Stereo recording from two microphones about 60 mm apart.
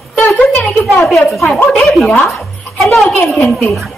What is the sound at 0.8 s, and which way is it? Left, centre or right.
Speech, centre.